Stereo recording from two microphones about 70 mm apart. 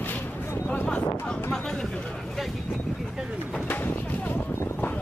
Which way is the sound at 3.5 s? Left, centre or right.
Left.